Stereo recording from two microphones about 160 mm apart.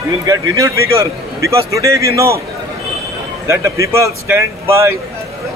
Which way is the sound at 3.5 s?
20° right (ahead or behind).